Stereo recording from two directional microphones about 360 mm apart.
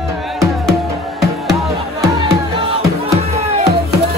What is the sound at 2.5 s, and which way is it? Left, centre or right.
Music, centre.